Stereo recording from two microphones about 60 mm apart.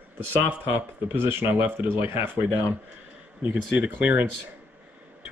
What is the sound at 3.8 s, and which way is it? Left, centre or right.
Speech, right.